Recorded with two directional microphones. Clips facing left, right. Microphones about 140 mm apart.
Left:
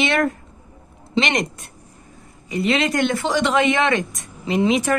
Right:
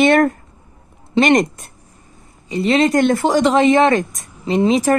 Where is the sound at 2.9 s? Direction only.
45° right (ahead or behind).